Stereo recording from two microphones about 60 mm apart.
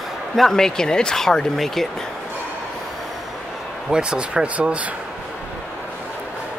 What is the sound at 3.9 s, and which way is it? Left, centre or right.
Speech, centre.